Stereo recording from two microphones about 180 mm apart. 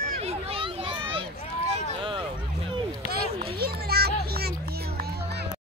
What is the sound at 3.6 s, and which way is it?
Children playing, 60° right (ahead or behind).